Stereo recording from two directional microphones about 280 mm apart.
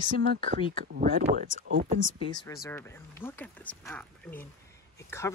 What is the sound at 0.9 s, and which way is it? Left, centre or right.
Speech, right.